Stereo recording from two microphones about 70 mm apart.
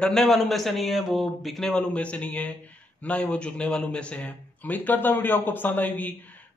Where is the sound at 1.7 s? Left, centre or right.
Centre.